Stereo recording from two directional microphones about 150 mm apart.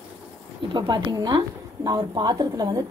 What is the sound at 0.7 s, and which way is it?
A woman's voice, 30° right (ahead or behind).